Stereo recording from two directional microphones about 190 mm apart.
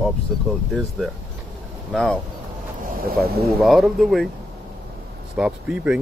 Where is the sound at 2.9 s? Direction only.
50° right (ahead or behind).